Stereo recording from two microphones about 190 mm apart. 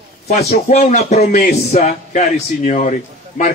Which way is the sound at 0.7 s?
35° left (ahead or behind).